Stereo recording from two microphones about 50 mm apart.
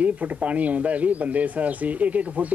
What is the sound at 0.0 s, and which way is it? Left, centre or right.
Speech, right.